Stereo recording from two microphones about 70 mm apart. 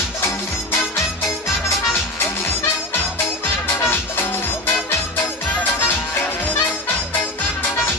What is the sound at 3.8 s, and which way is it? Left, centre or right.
Music, left.